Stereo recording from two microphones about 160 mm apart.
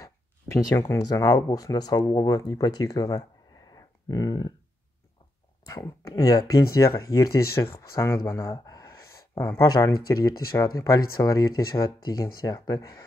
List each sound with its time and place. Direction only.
0.0 s speech: 20° left (ahead or behind)
5.7 s speech: 20° left (ahead or behind)
8.3 s a sound: 20° left (ahead or behind)
9.6 s speech: 20° left (ahead or behind)